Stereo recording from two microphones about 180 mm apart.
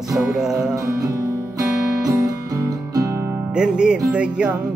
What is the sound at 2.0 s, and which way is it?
Music, 20° right (ahead or behind).